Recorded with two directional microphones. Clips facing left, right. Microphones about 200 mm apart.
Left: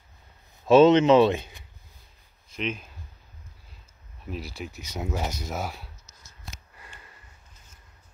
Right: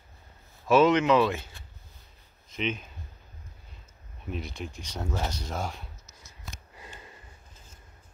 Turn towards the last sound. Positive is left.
turn(degrees=-20)  # may be behind; listen again after turning